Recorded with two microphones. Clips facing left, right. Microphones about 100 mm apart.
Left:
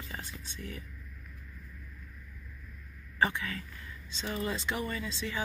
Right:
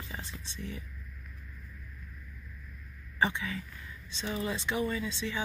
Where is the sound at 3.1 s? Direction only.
20° right (ahead or behind).